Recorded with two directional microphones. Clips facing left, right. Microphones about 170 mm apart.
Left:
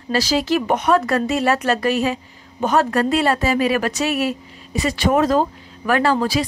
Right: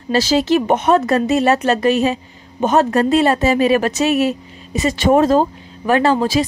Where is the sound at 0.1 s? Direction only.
25° right (ahead or behind).